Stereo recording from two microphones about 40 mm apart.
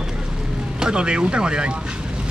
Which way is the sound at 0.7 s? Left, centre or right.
Right.